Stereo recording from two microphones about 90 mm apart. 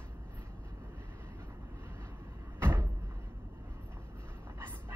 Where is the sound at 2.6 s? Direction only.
25° right (ahead or behind).